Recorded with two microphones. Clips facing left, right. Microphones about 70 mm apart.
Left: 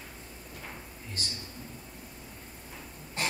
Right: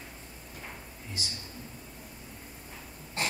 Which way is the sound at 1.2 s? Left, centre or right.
Left.